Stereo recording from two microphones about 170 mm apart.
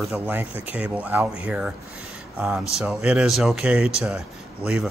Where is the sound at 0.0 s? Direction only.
5° right (ahead or behind).